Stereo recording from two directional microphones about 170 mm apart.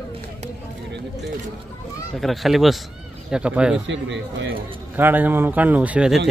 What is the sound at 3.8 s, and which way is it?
Speech, 90° right.